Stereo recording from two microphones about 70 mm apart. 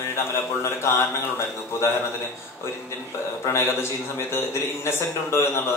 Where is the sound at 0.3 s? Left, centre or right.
Left.